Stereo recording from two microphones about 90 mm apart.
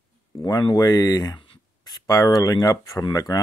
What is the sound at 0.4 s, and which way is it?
Speech, 40° left (ahead or behind).